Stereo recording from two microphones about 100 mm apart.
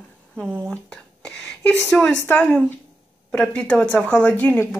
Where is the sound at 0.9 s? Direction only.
10° left (ahead or behind).